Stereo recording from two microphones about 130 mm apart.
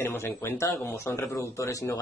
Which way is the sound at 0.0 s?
20° left (ahead or behind).